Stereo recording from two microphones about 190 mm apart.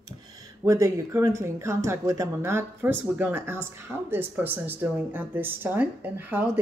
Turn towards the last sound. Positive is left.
turn(degrees=-10)  # may be behind; listen again after turning